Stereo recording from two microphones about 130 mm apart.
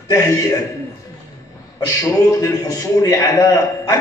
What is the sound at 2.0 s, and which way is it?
A man's voice, 25° left (ahead or behind).